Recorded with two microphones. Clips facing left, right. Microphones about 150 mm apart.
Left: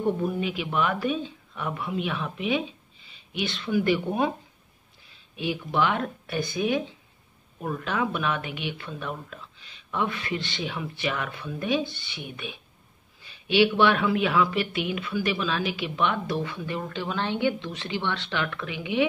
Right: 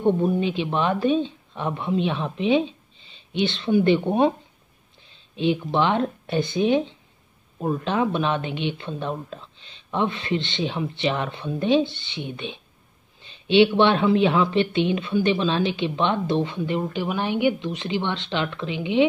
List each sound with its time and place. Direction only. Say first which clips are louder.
0.0 s speech: right 5 dB; 25° right (ahead or behind)